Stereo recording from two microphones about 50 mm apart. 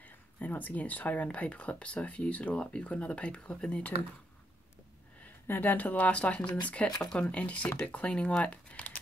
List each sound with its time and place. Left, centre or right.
0.0 s speech: left
5.5 s speech: left